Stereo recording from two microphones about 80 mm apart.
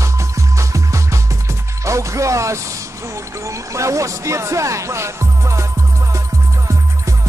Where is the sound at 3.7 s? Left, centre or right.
Right.